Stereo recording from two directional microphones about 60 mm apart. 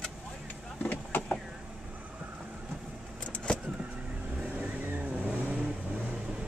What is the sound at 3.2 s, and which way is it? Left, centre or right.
Vehicle, centre.